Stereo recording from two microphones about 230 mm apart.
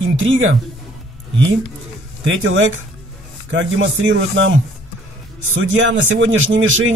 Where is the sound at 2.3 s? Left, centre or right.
Right.